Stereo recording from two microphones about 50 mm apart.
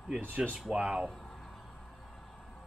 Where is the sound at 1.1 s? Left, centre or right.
Centre.